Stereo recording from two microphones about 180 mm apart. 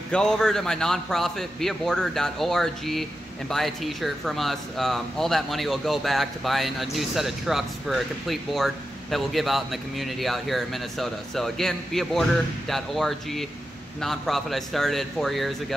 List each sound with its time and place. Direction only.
0.1 s a man's voice: 5° left (ahead or behind)